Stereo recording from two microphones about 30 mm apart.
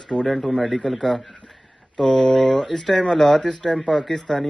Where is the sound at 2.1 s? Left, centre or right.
Centre.